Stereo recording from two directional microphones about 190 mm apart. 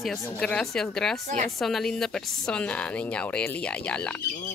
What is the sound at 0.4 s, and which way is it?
Speech, 5° left (ahead or behind).